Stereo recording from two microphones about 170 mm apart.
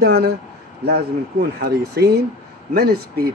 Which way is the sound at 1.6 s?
65° right (ahead or behind).